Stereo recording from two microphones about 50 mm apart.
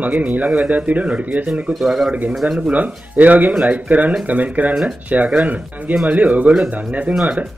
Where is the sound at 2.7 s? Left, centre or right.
Right.